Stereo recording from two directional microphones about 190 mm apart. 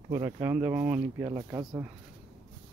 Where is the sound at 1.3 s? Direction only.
20° right (ahead or behind).